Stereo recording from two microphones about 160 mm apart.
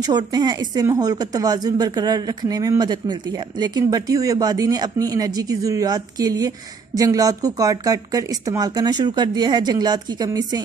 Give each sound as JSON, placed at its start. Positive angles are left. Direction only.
{"t": 0.0, "sound": "a woman's voice", "side_deg": -25}